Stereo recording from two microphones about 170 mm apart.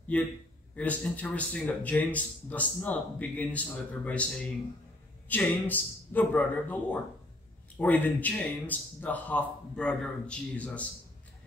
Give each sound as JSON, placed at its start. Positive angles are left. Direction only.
{"t": 0.1, "sound": "speech", "side_deg": 10}